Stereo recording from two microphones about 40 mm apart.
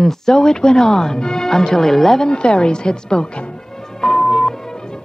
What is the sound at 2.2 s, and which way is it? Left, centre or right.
A woman's voice, left.